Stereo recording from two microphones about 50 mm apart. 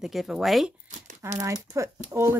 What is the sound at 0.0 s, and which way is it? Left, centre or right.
Speech, centre.